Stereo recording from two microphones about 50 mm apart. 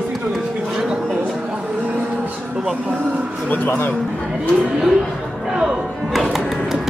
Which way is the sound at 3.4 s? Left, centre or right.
Left.